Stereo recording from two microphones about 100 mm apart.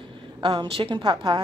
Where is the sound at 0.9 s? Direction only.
50° right (ahead or behind).